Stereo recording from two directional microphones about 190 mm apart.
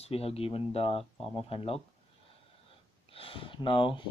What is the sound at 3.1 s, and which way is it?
Speech, 30° left (ahead or behind).